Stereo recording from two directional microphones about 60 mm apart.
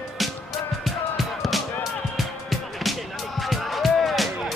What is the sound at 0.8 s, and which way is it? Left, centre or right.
Music, centre.